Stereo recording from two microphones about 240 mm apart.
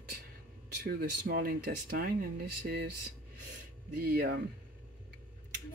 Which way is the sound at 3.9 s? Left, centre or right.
Right.